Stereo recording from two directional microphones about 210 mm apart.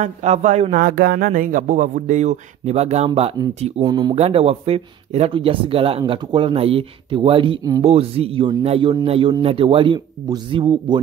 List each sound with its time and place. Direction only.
0.0 s speech: 35° right (ahead or behind)